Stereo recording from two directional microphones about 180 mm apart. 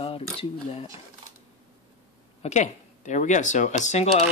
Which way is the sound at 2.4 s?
40° left (ahead or behind).